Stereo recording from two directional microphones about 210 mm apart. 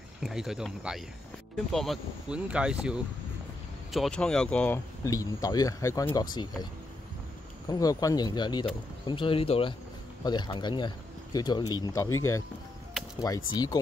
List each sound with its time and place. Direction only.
0.2 s speech: centre (ahead or behind); by 12.2 s 15° left (ahead or behind)
13.2 s speech: 15° left (ahead or behind)